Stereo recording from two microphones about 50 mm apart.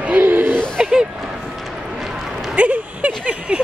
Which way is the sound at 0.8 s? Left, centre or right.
Centre.